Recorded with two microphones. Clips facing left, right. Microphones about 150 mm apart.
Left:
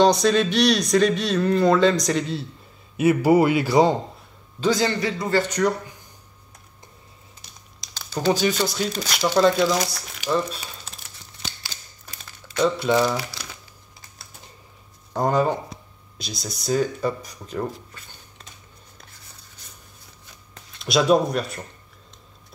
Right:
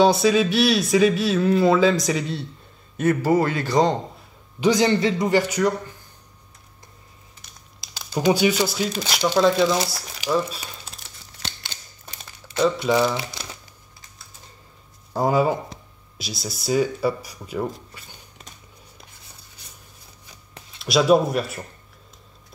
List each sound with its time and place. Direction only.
0.0 s speech: 5° right (ahead or behind)
3.0 s speech: 10° left (ahead or behind)
4.6 s speech: 15° right (ahead or behind)
7.8 s speech: 10° right (ahead or behind)
10.2 s crumpling: 5° right (ahead or behind)
12.8 s speech: centre (ahead or behind)
13.1 s speech: 20° right (ahead or behind)
15.1 s speech: 5° right (ahead or behind)
20.5 s speech: centre (ahead or behind)